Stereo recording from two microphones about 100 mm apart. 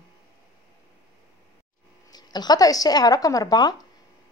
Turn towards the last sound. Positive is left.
turn(degrees=45)  # may be behind; listen again after turning